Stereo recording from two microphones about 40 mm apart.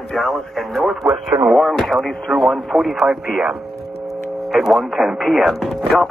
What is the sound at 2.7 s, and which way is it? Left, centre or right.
Speech, centre.